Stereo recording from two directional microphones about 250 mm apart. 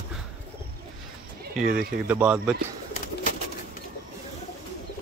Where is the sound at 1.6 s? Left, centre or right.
Centre.